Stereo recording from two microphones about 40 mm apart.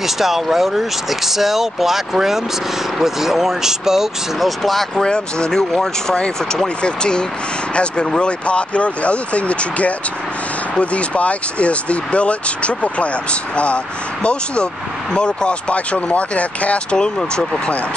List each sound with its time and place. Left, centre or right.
0.0 s speech: centre
4.5 s speech: centre
4.9 s speech: left
6.1 s speech: left
16.9 s speech: centre